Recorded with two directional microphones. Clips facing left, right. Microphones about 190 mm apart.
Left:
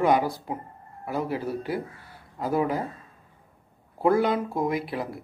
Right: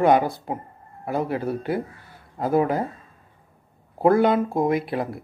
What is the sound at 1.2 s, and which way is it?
Speech, 55° right (ahead or behind).